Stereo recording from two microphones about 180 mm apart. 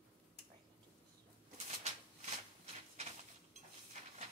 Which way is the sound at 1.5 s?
40° right (ahead or behind).